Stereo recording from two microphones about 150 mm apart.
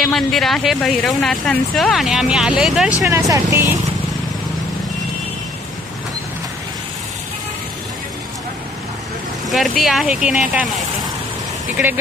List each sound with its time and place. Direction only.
0.0 s speech: centre (ahead or behind)
3.1 s speech: 20° right (ahead or behind)
9.5 s speech: centre (ahead or behind)